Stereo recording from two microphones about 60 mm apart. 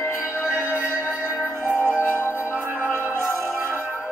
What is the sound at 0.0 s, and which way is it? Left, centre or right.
Music, left.